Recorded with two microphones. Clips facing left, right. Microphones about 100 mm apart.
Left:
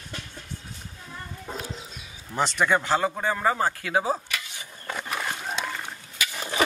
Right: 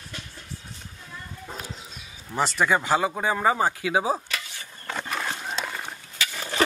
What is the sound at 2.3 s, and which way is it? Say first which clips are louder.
A man's voice: even; centre (ahead or behind).